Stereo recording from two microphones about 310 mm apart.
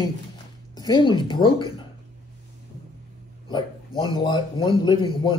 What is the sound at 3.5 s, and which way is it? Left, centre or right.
Speech, centre.